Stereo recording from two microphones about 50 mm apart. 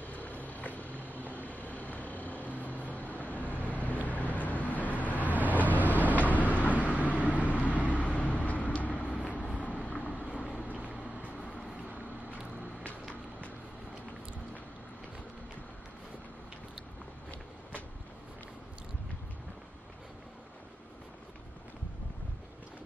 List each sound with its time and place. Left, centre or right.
0.0 s vehicle: left